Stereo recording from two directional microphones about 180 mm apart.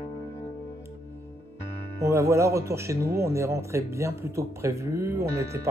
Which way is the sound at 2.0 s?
15° right (ahead or behind).